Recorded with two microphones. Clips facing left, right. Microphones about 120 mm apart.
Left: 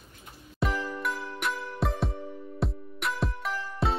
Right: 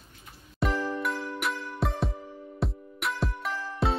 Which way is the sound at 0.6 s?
Centre (ahead or behind).